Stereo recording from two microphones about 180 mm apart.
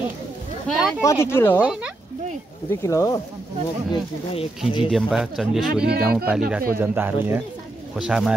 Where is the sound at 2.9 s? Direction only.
15° left (ahead or behind).